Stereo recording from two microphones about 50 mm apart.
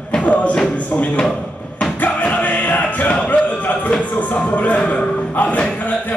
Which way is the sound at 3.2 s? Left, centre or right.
Left.